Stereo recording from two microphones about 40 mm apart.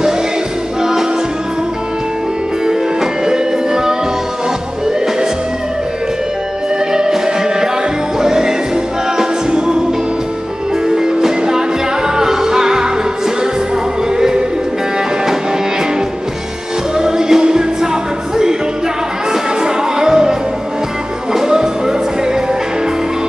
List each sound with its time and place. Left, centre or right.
2.6 s music: centre
6.9 s music: centre
10.9 s music: centre
14.1 s music: centre
17.0 s music: centre
19.6 s music: centre